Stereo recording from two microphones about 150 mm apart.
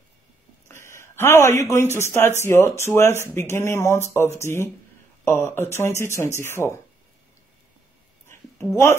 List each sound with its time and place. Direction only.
0.7 s speech: 15° left (ahead or behind)